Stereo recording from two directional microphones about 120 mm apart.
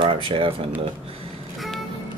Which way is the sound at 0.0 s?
45° right (ahead or behind).